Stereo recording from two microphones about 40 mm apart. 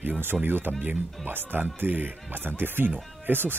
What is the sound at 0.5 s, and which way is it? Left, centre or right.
Speech, right.